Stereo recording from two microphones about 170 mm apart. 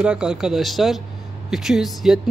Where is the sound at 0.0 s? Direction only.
5° right (ahead or behind).